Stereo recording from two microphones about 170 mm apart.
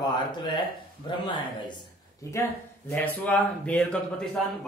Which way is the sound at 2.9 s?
10° left (ahead or behind).